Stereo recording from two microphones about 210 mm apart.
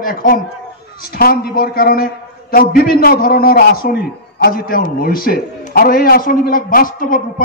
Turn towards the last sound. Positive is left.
turn(degrees=40)  # may be behind; listen again after turning